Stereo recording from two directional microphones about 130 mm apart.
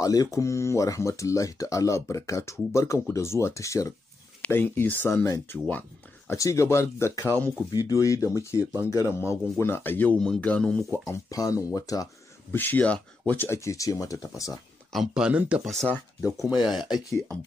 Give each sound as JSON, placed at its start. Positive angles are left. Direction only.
{"t": 0.0, "sound": "speech", "side_deg": 25}
{"t": 7.7, "sound": "speech", "side_deg": 25}
{"t": 11.1, "sound": "speech", "side_deg": 25}
{"t": 12.5, "sound": "speech", "side_deg": 15}
{"t": 14.9, "sound": "speech", "side_deg": -5}